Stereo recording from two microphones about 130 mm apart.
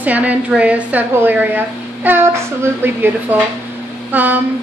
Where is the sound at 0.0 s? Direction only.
10° right (ahead or behind).